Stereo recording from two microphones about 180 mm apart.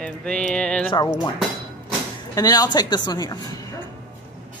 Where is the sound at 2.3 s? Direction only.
20° left (ahead or behind).